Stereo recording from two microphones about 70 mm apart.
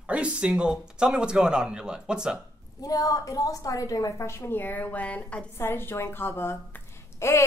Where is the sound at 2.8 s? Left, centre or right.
Left; by 5.4 s centre.